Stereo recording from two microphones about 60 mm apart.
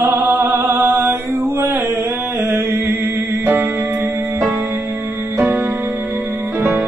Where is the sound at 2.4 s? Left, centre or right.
Right.